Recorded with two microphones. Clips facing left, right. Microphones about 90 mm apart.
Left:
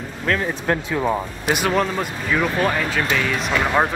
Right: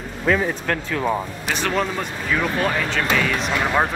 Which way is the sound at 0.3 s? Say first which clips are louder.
Right 3 dB; 5° right (ahead or behind).